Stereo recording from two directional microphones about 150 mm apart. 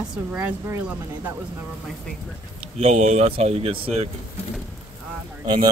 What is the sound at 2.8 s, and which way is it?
Speech, 45° right (ahead or behind).